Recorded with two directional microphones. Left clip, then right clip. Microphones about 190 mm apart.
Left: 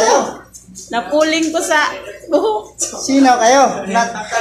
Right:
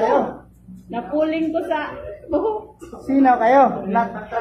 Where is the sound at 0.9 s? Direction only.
20° left (ahead or behind).